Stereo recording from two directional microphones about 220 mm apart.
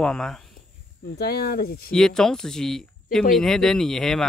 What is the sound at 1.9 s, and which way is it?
Speech, 5° left (ahead or behind).